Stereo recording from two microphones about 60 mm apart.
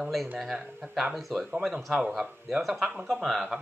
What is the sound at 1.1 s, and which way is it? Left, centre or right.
Speech, centre.